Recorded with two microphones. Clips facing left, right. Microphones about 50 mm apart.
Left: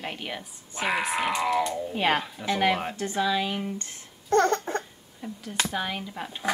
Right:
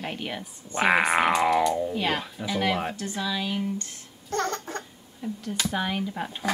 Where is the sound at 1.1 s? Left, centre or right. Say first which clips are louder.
Right 5 dB; right.